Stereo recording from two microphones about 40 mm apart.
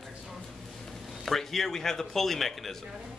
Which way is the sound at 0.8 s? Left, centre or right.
Centre.